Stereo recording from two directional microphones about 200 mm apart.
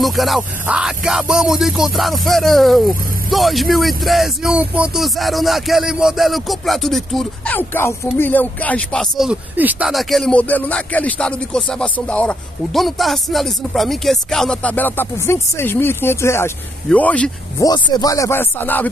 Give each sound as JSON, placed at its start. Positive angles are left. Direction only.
{"t": 0.0, "sound": "speech", "side_deg": 0}
{"t": 17.6, "sound": "speech", "side_deg": 20}